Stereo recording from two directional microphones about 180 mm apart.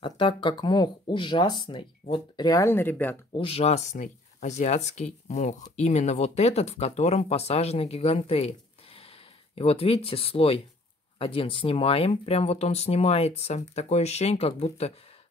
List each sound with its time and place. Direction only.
0.0 s speech: 25° left (ahead or behind); by 3.2 s 10° left (ahead or behind)
3.3 s speech: 35° left (ahead or behind)
9.6 s speech: 35° left (ahead or behind)